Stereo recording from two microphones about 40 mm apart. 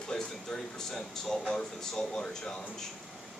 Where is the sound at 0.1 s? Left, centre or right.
Centre.